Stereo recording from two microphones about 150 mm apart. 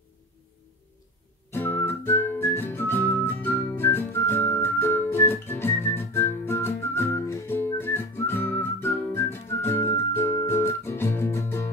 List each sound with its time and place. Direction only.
1.5 s music: 15° left (ahead or behind)